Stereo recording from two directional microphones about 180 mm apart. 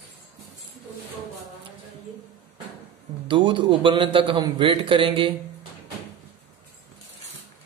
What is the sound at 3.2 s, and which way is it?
A man's voice, 25° right (ahead or behind).